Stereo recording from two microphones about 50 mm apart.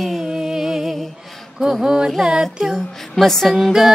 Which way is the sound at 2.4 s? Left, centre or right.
Centre.